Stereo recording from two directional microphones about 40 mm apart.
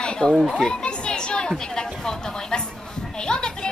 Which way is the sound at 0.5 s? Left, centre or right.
Centre.